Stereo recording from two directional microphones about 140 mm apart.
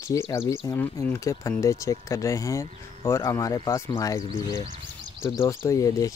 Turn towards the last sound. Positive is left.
turn(degrees=25)  # may be behind; listen again after turning